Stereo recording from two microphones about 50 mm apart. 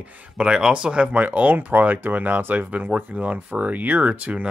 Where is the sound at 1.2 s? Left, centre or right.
Right.